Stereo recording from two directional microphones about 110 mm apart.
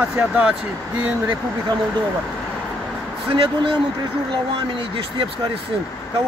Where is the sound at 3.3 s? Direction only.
50° right (ahead or behind).